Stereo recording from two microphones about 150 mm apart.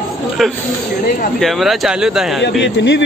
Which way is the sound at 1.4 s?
Centre (ahead or behind).